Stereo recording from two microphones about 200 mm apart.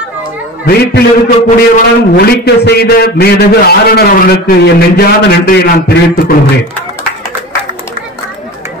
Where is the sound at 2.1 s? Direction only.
55° left (ahead or behind).